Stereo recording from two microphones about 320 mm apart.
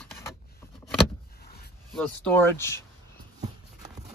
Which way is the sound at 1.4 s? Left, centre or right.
Left.